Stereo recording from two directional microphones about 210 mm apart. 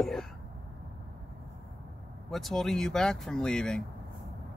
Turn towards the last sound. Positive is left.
turn(degrees=5)  # may be behind; listen again after turning